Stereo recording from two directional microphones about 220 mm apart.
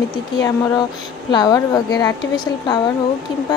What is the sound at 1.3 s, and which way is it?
A woman's voice, 20° left (ahead or behind).